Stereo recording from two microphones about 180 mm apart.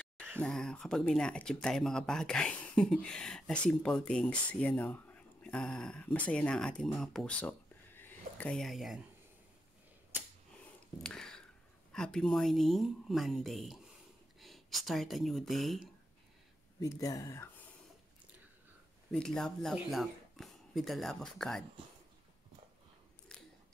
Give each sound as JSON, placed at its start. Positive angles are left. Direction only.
{"t": 0.4, "sound": "speech", "side_deg": 5}
{"t": 11.0, "sound": "speech", "side_deg": 5}
{"t": 16.8, "sound": "speech", "side_deg": 20}
{"t": 19.1, "sound": "speech", "side_deg": 5}